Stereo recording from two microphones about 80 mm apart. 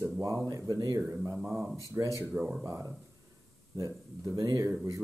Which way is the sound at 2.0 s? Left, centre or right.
Right.